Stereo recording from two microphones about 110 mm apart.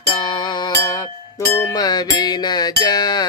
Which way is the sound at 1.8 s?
35° left (ahead or behind).